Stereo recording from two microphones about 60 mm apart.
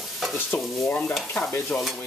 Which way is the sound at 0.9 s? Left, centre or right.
Left.